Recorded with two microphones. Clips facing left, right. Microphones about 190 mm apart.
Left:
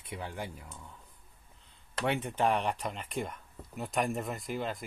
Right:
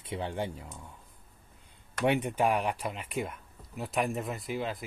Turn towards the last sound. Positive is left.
turn(degrees=0)  # may be behind; listen again after turning